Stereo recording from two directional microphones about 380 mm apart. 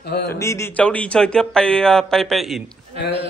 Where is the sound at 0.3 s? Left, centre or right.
Centre.